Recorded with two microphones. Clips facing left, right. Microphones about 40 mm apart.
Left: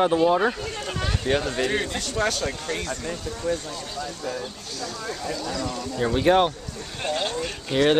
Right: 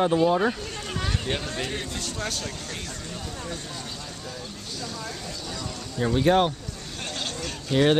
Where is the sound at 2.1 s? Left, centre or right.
Left.